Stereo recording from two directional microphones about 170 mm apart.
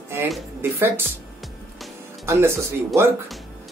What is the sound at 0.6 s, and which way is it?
Speech, 15° right (ahead or behind).